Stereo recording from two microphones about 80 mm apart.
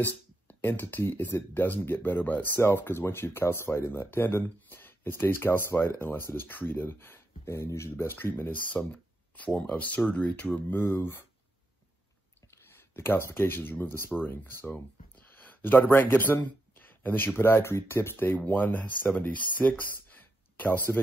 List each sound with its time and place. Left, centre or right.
0.5 s speech: left
12.4 s speech: left
19.8 s a sound: left